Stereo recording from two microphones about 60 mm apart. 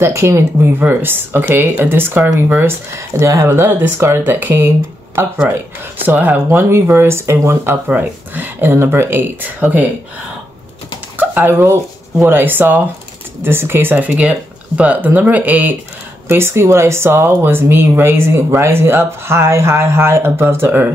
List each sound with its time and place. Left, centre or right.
0.0 s speech: right
2.6 s speech: right
6.0 s speech: right
6.5 s speech: right
11.1 s speech: right
14.0 s speech: centre
16.3 s speech: right